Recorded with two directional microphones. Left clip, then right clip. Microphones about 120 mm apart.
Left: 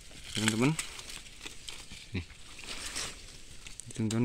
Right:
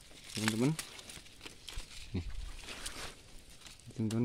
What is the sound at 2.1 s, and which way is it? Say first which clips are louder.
Pig: left 4 dB; 20° right (ahead or behind).